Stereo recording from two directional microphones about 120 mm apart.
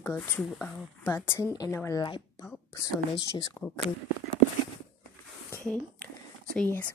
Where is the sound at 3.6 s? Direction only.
15° left (ahead or behind).